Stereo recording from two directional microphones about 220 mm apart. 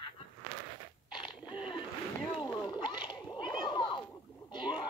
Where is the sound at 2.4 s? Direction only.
20° left (ahead or behind).